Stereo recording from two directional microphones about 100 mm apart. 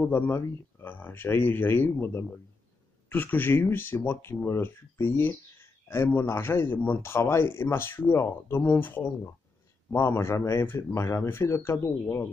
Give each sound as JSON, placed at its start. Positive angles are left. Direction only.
{"t": 0.0, "sound": "speech", "side_deg": 20}